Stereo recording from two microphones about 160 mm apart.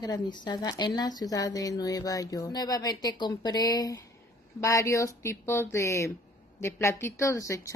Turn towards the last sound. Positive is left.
turn(degrees=20)  # may be behind; listen again after turning